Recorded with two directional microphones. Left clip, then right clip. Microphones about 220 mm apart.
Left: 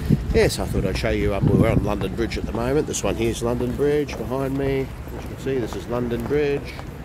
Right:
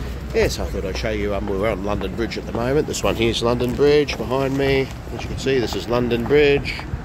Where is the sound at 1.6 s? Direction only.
5° left (ahead or behind); by 6.6 s 25° right (ahead or behind).